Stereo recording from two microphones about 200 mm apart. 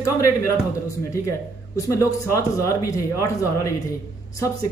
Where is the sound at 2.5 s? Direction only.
15° left (ahead or behind).